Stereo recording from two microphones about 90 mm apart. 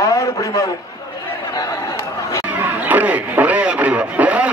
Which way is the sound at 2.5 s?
20° right (ahead or behind).